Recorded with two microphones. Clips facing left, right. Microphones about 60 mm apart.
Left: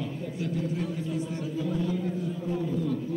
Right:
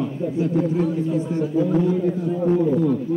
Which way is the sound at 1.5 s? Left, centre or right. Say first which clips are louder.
Right 10 dB; right.